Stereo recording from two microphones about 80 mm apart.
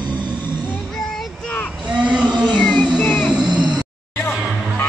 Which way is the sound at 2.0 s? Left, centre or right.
Centre.